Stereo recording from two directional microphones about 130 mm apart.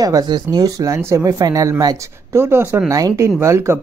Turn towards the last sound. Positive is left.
turn(degrees=-20)  # may be behind; listen again after turning